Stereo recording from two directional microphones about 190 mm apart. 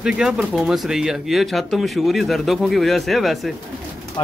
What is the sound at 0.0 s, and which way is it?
Speech, 5° right (ahead or behind).